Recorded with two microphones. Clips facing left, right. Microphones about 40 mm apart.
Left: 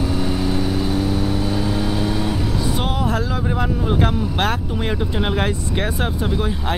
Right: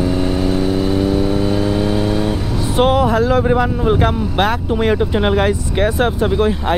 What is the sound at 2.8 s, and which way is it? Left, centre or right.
Vehicle, right.